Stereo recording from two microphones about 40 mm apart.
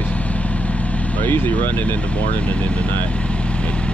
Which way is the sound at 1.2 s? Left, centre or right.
Left.